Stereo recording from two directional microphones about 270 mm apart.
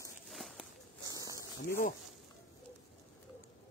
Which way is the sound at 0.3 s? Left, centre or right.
Centre.